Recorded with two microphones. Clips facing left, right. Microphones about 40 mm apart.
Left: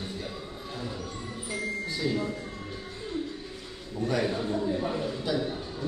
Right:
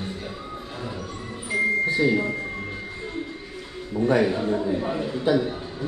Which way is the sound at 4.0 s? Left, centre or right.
Right.